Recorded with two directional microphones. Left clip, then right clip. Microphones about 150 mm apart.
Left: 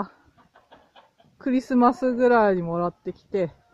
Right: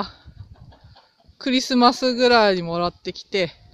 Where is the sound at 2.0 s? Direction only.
5° right (ahead or behind).